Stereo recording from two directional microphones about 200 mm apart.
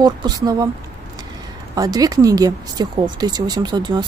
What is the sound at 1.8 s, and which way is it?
Speech, 20° right (ahead or behind).